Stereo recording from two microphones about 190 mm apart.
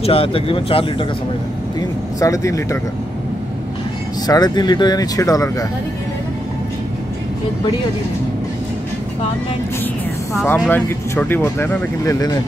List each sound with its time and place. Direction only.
0.0 s speech: 30° left (ahead or behind)
1.8 s speech: 15° left (ahead or behind)
4.3 s speech: 20° left (ahead or behind)
10.3 s speech: 10° left (ahead or behind)